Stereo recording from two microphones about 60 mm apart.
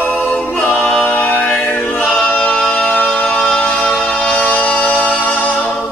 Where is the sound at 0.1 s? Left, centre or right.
Centre.